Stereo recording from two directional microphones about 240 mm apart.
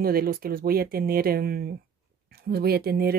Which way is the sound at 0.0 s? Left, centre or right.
Right.